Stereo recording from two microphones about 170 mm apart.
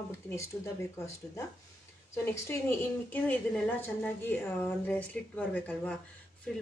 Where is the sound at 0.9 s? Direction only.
15° left (ahead or behind).